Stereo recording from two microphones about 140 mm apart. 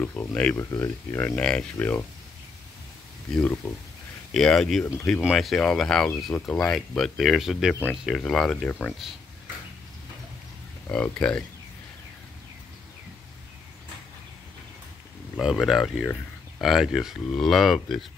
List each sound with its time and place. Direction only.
0.0 s speech: 10° left (ahead or behind)
0.6 s speech: 20° left (ahead or behind)
1.1 s speech: 10° left (ahead or behind)
3.3 s speech: 5° left (ahead or behind)
10.9 s speech: 5° left (ahead or behind)
15.3 s speech: 5° left (ahead or behind)